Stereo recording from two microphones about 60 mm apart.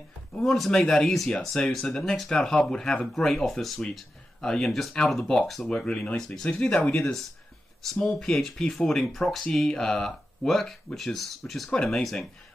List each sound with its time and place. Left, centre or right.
0.3 s speech: centre
6.1 s speech: centre
11.7 s speech: centre